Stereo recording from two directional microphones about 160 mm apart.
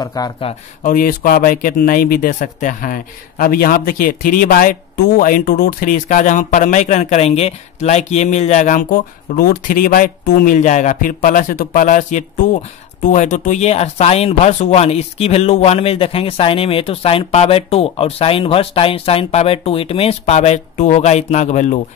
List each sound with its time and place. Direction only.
0.0 s speech: 25° left (ahead or behind)
0.8 s speech: 60° left (ahead or behind)